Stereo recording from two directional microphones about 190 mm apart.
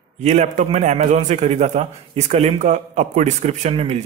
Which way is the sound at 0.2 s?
35° right (ahead or behind).